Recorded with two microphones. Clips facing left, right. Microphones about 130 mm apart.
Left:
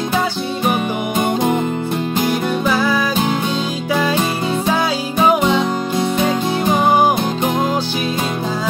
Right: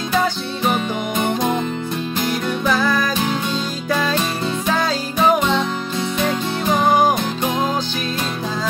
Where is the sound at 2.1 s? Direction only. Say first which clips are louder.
Left 4 dB; 55° left (ahead or behind).